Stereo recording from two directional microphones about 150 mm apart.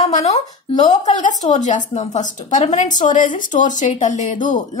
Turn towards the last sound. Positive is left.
turn(degrees=55)  # may be behind; listen again after turning